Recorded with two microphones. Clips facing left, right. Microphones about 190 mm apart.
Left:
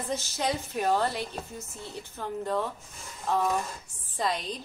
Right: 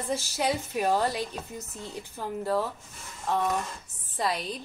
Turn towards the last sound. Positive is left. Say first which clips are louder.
# even
turn(degrees=-5)  # may be behind; listen again after turning